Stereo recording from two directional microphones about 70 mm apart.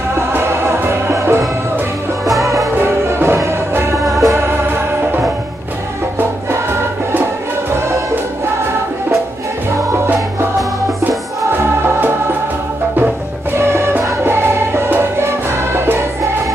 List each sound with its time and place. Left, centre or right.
0.3 s music: right
2.8 s music: right
4.3 s music: right
11.5 s music: right
13.6 s music: right